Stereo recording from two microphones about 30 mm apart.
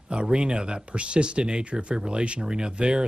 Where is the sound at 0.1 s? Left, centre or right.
Right.